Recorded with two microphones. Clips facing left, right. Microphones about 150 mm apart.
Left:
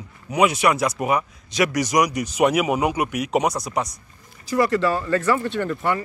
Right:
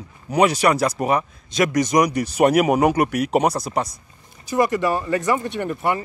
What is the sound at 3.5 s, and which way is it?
Speech, 30° right (ahead or behind).